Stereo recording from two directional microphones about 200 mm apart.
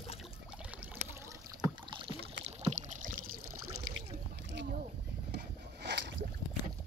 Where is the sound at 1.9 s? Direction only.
25° right (ahead or behind).